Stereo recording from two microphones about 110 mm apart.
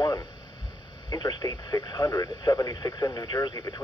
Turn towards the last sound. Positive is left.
turn(degrees=35)  # may be behind; listen again after turning